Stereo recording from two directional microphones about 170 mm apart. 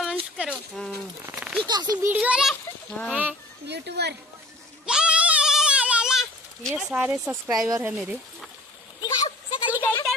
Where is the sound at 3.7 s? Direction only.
80° right.